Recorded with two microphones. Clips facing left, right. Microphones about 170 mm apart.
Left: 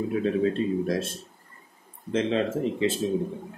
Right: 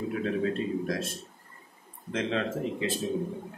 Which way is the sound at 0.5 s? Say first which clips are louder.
Left 4 dB; 25° left (ahead or behind).